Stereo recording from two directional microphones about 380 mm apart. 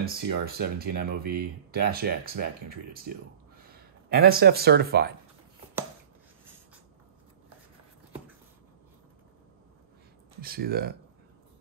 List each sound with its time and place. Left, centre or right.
0.0 s speech: right
10.4 s speech: right